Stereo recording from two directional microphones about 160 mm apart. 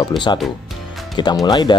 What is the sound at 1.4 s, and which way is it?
Speech, 25° left (ahead or behind).